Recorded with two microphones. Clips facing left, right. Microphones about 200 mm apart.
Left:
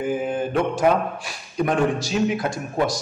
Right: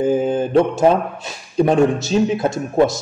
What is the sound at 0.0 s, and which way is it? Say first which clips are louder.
A man's voice: right 6 dB; 25° right (ahead or behind).